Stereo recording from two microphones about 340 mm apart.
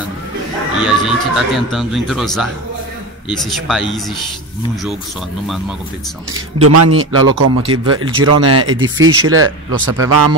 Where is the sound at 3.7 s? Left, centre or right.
Centre.